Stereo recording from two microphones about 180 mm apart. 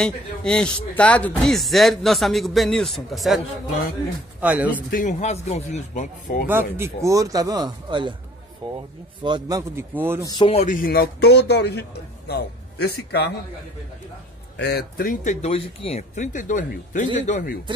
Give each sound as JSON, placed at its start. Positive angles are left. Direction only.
{"t": 0.0, "sound": "a man's voice", "side_deg": 5}
{"t": 4.9, "sound": "speech", "side_deg": 40}
{"t": 6.4, "sound": "a man's voice", "side_deg": -10}
{"t": 10.3, "sound": "speech", "side_deg": 30}
{"t": 10.7, "sound": "speech", "side_deg": 55}
{"t": 14.6, "sound": "speech", "side_deg": 65}
{"t": 15.4, "sound": "speech", "side_deg": 35}